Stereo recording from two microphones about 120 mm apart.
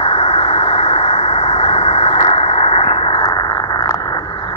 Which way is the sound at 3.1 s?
35° left (ahead or behind).